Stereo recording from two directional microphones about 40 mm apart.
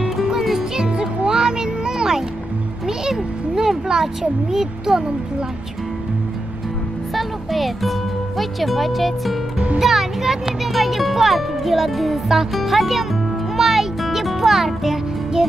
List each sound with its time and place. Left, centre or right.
0.2 s music: centre
0.8 s music: right
3.1 s speech: centre
7.2 s a child's voice: centre
13.6 s music: centre